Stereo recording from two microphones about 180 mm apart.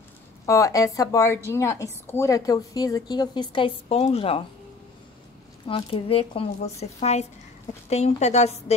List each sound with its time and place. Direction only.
0.5 s a woman's voice: 15° left (ahead or behind)
5.7 s speech: 30° left (ahead or behind)